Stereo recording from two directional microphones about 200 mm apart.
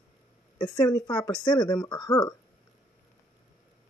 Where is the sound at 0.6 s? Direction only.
20° left (ahead or behind).